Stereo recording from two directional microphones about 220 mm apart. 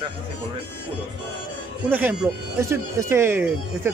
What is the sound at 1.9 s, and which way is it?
Speech, 5° right (ahead or behind).